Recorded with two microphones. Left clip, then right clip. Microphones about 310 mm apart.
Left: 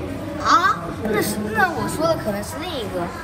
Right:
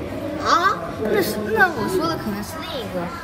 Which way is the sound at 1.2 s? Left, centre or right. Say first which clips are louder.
Right 2 dB; centre.